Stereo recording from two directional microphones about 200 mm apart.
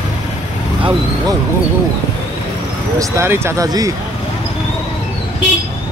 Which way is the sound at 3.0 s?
15° right (ahead or behind).